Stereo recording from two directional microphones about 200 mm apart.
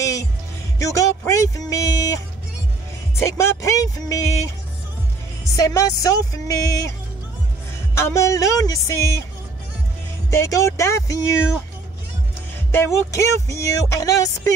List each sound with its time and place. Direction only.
0.0 s music: 15° left (ahead or behind)
0.7 s speech: 15° left (ahead or behind)
3.2 s music: 15° left (ahead or behind)
5.4 s music: 15° left (ahead or behind)
7.9 s music: 15° left (ahead or behind)
10.3 s music: 15° left (ahead or behind)
12.7 s music: 15° left (ahead or behind)